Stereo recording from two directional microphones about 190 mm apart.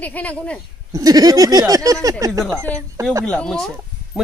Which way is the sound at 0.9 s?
20° right (ahead or behind).